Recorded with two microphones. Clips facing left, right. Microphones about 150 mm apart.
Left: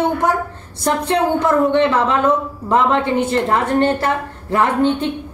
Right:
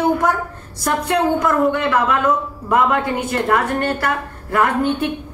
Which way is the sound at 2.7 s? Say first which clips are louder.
Left 1 dB; 25° left (ahead or behind).